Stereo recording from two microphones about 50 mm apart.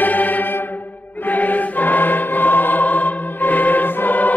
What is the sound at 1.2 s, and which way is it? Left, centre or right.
Choir, left.